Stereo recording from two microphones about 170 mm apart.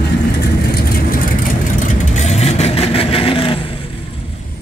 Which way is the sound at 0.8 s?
60° left (ahead or behind).